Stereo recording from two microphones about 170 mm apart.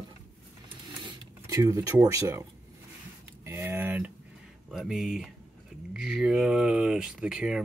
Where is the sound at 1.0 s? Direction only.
20° right (ahead or behind).